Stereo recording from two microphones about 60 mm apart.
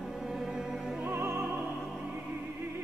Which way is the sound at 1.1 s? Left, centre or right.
Right.